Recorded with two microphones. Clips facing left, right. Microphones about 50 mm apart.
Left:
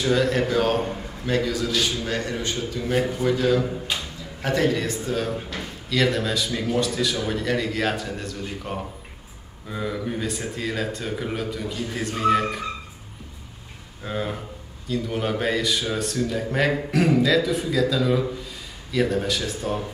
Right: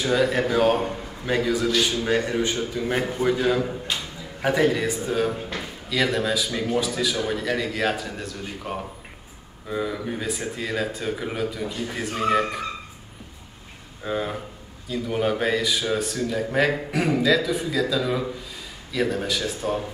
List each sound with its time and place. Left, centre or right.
0.0 s a man's voice: centre
14.0 s speech: centre